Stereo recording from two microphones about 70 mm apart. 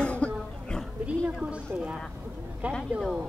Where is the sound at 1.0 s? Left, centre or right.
Centre.